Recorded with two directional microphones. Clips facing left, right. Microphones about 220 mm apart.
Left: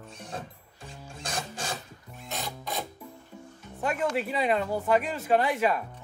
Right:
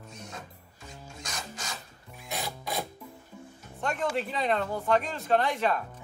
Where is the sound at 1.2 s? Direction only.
30° left (ahead or behind).